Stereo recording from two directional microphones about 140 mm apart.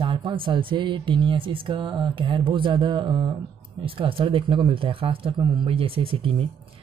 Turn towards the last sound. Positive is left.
turn(degrees=-40)  # may be behind; listen again after turning